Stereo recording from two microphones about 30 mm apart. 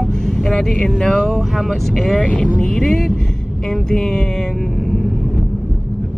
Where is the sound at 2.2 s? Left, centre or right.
Left.